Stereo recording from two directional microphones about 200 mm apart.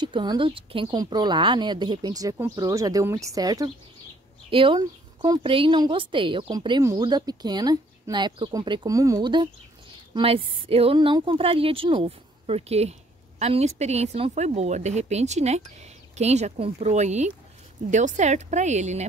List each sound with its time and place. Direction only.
0.0 s a woman's voice: 20° right (ahead or behind)